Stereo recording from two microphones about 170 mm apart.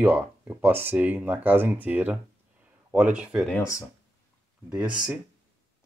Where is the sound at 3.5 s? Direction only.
20° left (ahead or behind).